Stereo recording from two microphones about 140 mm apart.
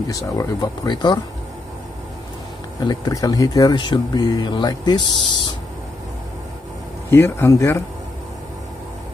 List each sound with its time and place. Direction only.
0.1 s speech: 25° left (ahead or behind)
2.9 s speech: 25° left (ahead or behind)
7.1 s speech: 20° left (ahead or behind)